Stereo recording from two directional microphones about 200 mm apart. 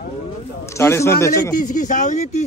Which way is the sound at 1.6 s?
40° left (ahead or behind).